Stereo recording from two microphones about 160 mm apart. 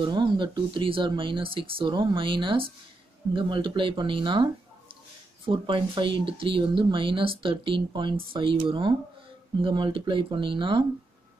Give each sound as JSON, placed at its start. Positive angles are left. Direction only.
{"t": 0.0, "sound": "speech", "side_deg": -30}
{"t": 5.5, "sound": "speech", "side_deg": -30}